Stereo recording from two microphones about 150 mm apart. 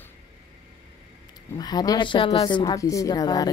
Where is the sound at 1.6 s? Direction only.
25° left (ahead or behind).